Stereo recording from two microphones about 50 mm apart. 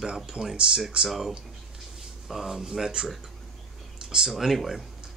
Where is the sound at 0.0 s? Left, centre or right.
Centre.